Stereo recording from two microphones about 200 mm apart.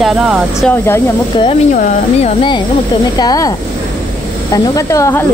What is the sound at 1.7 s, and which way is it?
Speech, 35° left (ahead or behind).